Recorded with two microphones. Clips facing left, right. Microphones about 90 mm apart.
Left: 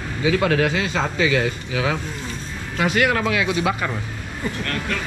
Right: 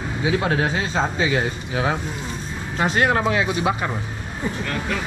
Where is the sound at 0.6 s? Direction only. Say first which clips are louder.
Even; 90° left.